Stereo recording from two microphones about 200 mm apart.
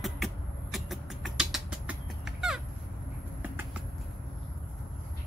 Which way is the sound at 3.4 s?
10° right (ahead or behind).